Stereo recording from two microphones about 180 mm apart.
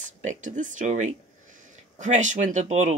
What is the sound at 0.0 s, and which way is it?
Speech, 45° right (ahead or behind).